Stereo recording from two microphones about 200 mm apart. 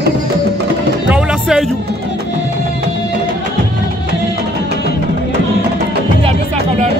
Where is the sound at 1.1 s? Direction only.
5° right (ahead or behind).